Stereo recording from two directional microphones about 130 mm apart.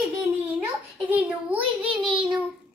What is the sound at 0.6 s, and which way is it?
A child's voice, 10° right (ahead or behind).